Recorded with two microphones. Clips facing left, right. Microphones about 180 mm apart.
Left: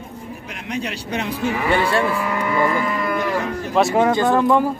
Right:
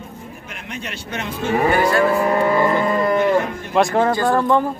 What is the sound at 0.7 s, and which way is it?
Speech, 35° left (ahead or behind).